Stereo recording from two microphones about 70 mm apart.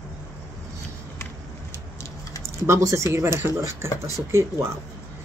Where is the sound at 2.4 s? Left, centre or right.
Right.